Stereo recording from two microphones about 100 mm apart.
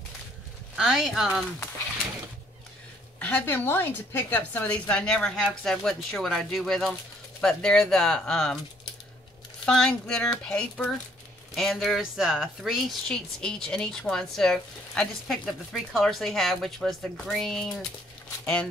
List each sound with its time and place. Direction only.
0.7 s a woman's voice: centre (ahead or behind)
3.2 s a woman's voice: 15° left (ahead or behind)
9.7 s a woman's voice: 10° left (ahead or behind)
13.4 s a woman's voice: 10° left (ahead or behind)